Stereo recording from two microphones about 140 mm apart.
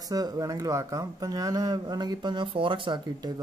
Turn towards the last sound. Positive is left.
turn(degrees=-35)  # may be behind; listen again after turning